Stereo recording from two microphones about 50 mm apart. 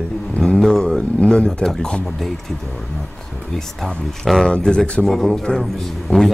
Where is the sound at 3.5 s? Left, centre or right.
Centre.